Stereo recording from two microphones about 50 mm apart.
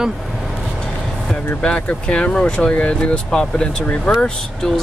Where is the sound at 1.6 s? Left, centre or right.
Left.